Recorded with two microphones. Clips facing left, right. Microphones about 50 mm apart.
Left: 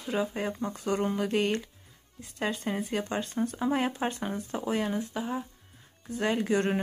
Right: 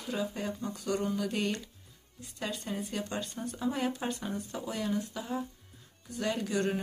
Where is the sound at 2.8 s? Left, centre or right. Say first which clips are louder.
Left 5 dB; left.